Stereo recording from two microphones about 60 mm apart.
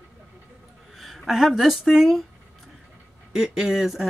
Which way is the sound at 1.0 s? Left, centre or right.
Centre.